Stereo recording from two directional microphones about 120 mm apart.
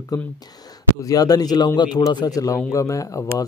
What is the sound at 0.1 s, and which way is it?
Speech, 30° left (ahead or behind).